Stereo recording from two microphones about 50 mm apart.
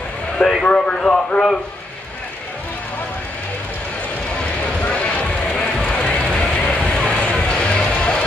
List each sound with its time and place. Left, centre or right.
0.4 s clip-clop: centre
0.7 s a man's voice: left
4.8 s a sound: left